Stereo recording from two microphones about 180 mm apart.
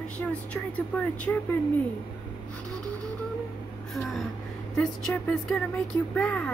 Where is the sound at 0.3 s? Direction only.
5° left (ahead or behind).